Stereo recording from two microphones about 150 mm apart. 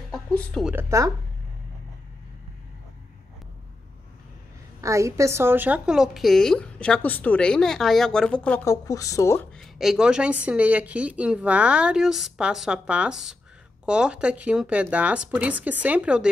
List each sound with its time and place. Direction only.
0.1 s a sound: 5° left (ahead or behind)
0.7 s speech: 15° right (ahead or behind)
4.8 s a woman's voice: 20° right (ahead or behind); by 8.6 s 10° left (ahead or behind)
8.6 s speech: 20° left (ahead or behind)
9.5 s speech: centre (ahead or behind)